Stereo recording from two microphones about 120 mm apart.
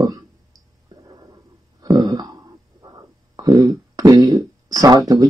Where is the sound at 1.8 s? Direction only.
35° right (ahead or behind).